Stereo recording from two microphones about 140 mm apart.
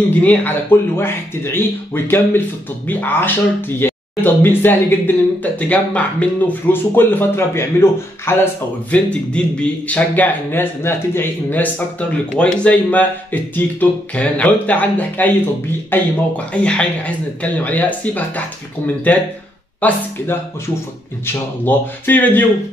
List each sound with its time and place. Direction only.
0.2 s speech: 10° left (ahead or behind)
21.3 s speech: 15° left (ahead or behind)